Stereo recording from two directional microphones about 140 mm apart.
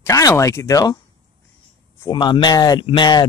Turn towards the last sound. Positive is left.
turn(degrees=30)  # may be behind; listen again after turning